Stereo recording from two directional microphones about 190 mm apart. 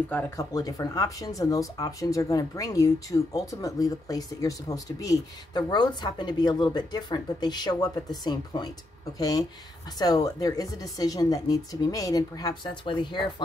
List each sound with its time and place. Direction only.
0.1 s speech: 15° left (ahead or behind)